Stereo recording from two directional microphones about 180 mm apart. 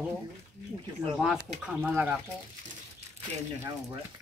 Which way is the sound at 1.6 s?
5° right (ahead or behind).